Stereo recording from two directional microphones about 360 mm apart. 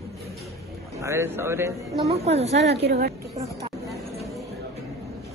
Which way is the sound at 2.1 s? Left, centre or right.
Centre.